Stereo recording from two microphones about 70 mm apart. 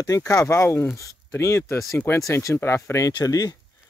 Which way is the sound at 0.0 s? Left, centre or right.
Left.